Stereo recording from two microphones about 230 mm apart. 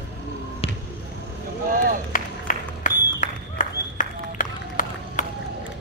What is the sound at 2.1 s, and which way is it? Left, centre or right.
Applause, left.